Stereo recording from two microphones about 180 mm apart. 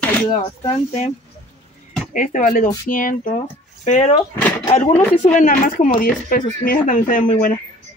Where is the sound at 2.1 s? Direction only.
45° left (ahead or behind).